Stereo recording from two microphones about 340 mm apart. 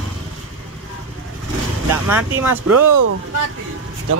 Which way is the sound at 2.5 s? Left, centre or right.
Right.